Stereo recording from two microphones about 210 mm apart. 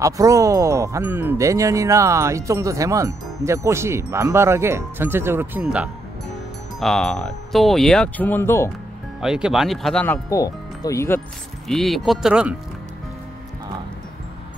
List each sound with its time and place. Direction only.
0.0 s speech: 15° right (ahead or behind); by 8.7 s 10° left (ahead or behind)
9.2 s speech: 5° right (ahead or behind)
10.3 s speech: 15° left (ahead or behind)
11.6 s speech: centre (ahead or behind)